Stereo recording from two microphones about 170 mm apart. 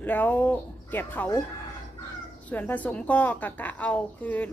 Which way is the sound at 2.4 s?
10° left (ahead or behind).